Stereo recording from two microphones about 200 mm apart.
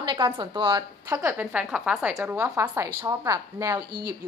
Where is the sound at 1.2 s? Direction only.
10° right (ahead or behind).